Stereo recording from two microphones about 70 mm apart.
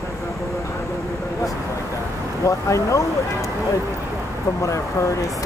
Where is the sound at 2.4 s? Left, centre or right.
Left.